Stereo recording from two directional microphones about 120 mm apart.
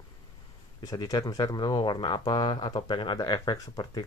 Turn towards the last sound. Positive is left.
turn(degrees=35)  # may be behind; listen again after turning